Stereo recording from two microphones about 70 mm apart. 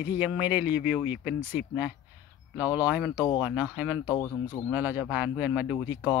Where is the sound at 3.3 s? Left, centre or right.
Right.